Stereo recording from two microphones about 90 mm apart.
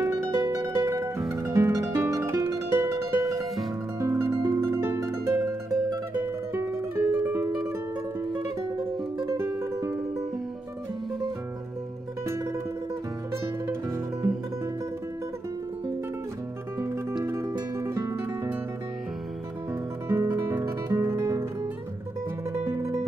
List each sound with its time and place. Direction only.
0.0 s music: 30° right (ahead or behind)
6.5 s music: 30° right (ahead or behind)
7.1 s music: 15° right (ahead or behind)
9.2 s music: 30° right (ahead or behind)
17.2 s music: 30° right (ahead or behind)
20.1 s music: 30° right (ahead or behind)
22.5 s music: 35° right (ahead or behind)